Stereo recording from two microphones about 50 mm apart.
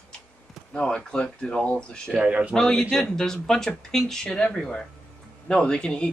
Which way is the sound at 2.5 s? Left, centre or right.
Centre.